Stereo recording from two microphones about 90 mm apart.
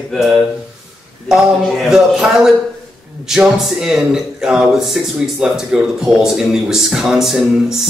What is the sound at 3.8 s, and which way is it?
Speech, 5° right (ahead or behind).